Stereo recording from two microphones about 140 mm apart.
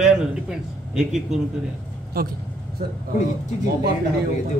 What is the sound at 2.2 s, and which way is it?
Speech, 90° right.